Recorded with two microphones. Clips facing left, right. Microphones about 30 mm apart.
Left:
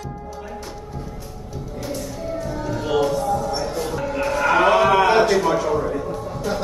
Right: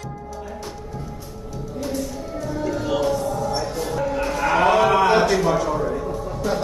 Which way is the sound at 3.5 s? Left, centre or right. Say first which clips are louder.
Even; centre.